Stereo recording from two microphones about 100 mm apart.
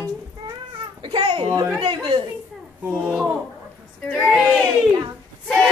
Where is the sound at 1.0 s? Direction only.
55° right (ahead or behind).